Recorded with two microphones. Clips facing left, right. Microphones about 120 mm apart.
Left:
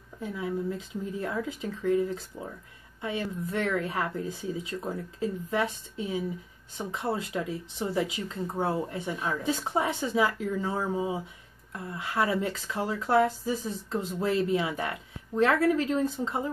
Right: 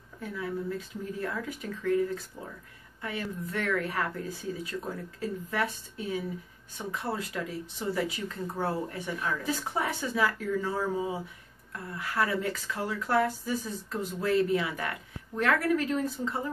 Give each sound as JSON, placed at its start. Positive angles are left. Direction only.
{"t": 0.2, "sound": "speech", "side_deg": 20}